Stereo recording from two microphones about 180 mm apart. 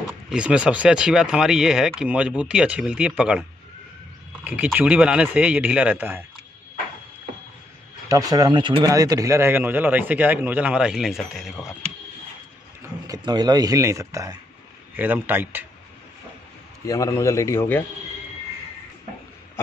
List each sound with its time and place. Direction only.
0.3 s speech: 5° right (ahead or behind)
4.5 s speech: 10° right (ahead or behind)
8.1 s speech: 20° right (ahead or behind); by 11.5 s centre (ahead or behind)
13.0 s speech: 20° right (ahead or behind)
16.8 s a man's voice: 15° left (ahead or behind)